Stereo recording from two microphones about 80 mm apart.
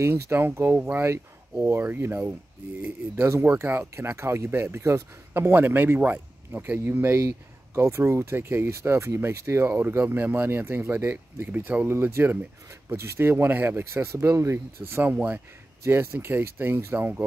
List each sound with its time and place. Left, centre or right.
0.0 s speech: right
0.7 s speech: centre
1.0 s speech: right
3.4 s speech: right